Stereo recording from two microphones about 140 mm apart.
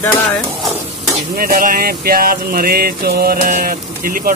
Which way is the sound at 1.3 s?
80° right.